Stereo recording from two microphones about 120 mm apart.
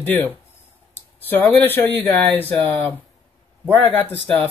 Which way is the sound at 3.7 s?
15° left (ahead or behind).